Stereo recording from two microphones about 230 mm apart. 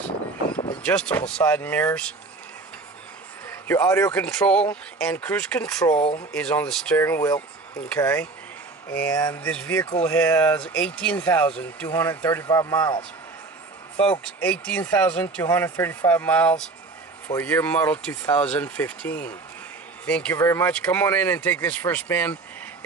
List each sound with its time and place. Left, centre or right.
0.8 s speech: centre
3.4 s speech: centre
5.9 s speech: left
6.3 s speech: centre
14.2 s speech: centre